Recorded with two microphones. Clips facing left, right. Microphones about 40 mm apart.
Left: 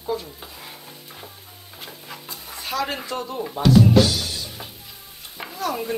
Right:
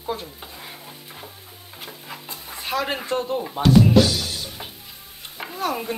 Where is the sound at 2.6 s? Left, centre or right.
Right.